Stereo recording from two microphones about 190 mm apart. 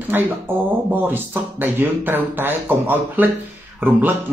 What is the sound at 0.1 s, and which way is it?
Speech, 10° right (ahead or behind).